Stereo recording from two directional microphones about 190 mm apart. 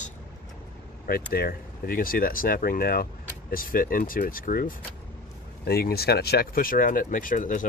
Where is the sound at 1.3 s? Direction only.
55° left (ahead or behind).